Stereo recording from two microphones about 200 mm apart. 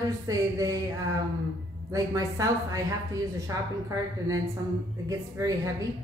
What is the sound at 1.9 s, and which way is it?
Speech, 15° right (ahead or behind).